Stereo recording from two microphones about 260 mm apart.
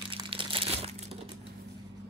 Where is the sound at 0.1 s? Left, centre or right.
Centre.